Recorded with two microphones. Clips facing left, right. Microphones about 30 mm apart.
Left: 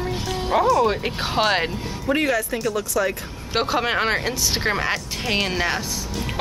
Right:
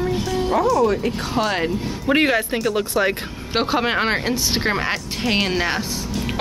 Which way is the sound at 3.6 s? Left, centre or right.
Centre.